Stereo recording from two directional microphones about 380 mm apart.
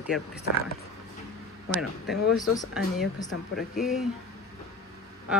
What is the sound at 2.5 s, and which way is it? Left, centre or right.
Speech, centre.